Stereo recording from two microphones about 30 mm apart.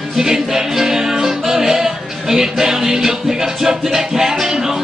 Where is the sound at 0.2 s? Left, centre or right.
Centre.